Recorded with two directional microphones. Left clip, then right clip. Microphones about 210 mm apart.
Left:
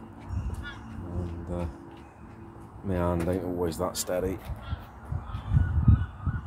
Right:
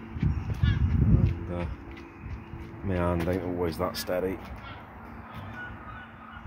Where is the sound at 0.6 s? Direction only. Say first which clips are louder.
Right 6 dB; 50° left (ahead or behind).